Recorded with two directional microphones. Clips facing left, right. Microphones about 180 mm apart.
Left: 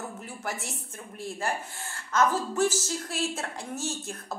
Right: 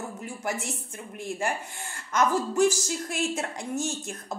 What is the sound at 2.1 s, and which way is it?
A woman's voice, 15° right (ahead or behind).